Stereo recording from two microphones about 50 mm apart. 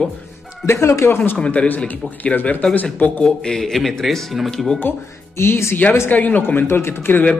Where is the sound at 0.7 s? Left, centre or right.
Left.